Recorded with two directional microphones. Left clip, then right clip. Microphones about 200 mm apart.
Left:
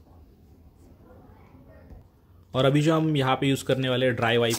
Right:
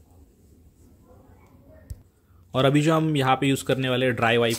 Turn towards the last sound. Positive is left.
turn(degrees=-15)  # may be behind; listen again after turning